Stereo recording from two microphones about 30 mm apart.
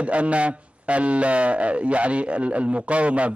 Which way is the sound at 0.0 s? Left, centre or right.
Right.